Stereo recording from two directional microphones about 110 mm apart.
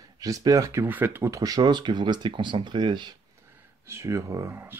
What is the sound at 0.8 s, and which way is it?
Speech, 20° right (ahead or behind).